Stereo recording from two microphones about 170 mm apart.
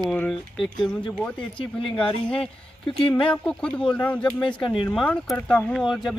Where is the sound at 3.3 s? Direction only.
5° left (ahead or behind).